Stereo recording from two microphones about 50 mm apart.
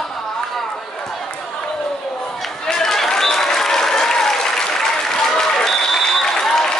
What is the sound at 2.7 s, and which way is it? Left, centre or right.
Applause, centre.